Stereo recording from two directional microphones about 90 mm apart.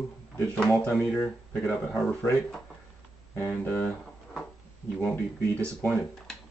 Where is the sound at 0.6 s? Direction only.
10° left (ahead or behind).